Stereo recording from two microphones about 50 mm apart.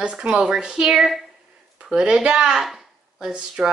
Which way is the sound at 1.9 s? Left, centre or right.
Centre.